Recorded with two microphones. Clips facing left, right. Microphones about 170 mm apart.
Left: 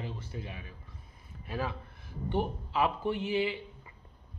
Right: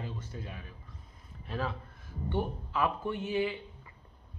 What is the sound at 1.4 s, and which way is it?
Speech, 10° left (ahead or behind).